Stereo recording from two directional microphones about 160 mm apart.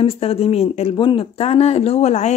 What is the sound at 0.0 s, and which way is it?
Speech, 40° left (ahead or behind).